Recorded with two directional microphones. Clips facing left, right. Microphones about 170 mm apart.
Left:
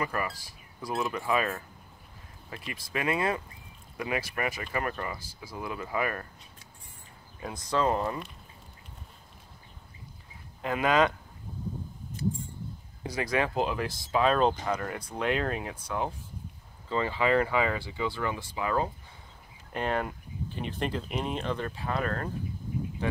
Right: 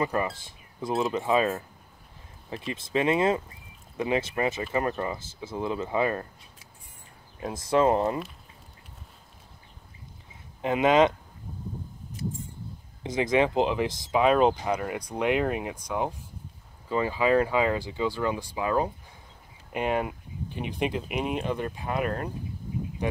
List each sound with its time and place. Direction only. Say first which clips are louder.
0.0 s speech: right 5 dB; 25° right (ahead or behind)
7.4 s speech: right 5 dB; 25° right (ahead or behind)
10.6 s speech: right 4 dB; 20° right (ahead or behind)
13.0 s speech: right 5 dB; 20° right (ahead or behind)